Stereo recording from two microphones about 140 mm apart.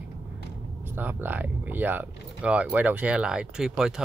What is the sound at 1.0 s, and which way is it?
Speech, 15° right (ahead or behind).